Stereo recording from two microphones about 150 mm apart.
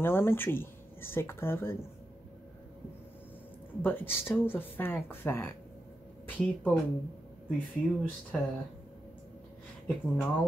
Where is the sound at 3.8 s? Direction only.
15° left (ahead or behind).